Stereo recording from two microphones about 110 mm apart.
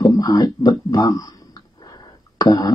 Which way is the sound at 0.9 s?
35° left (ahead or behind).